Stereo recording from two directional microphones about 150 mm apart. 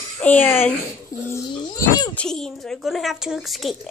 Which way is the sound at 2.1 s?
5° left (ahead or behind).